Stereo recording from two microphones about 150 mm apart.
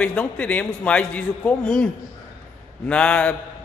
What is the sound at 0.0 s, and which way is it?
A man's voice, 5° left (ahead or behind).